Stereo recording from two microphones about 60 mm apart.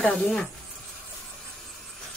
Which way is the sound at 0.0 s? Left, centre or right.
Left.